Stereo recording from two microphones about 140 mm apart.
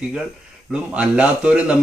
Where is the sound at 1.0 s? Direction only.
5° right (ahead or behind).